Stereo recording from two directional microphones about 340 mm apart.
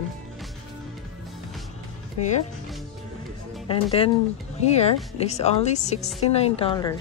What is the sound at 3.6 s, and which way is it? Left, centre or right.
Speech, centre.